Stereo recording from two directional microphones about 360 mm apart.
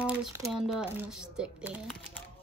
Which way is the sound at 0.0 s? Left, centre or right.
Centre.